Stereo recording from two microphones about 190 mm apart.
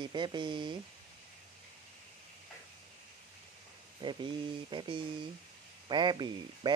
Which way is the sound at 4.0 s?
25° right (ahead or behind).